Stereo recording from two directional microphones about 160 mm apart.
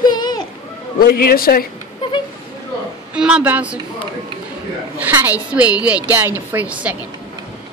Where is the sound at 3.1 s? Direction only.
5° right (ahead or behind).